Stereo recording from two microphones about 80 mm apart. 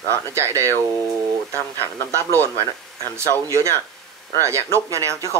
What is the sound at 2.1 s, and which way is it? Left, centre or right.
Speech, right.